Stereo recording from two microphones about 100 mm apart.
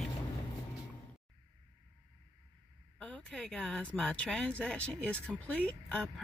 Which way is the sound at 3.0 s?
10° left (ahead or behind).